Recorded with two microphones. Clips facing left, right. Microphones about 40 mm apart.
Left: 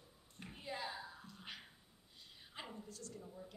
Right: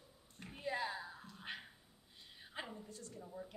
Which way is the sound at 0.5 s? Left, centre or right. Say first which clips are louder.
Right 5 dB; centre.